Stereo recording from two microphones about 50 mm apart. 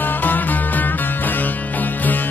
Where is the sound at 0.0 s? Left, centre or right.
Left.